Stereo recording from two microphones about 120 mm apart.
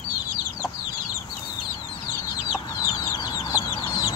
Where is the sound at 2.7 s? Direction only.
30° left (ahead or behind).